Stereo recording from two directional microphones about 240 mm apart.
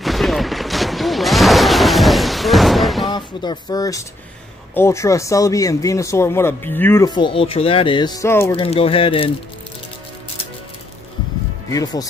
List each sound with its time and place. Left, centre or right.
0.0 s fusillade: centre
3.1 s speech: centre
8.5 s speech: left
11.7 s speech: centre